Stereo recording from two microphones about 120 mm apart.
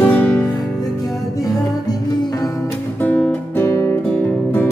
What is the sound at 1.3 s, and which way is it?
Music, 30° left (ahead or behind).